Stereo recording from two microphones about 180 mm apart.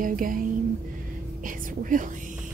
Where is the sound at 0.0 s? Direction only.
50° right (ahead or behind).